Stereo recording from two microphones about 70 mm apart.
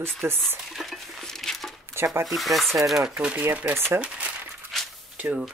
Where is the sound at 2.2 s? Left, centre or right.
Centre.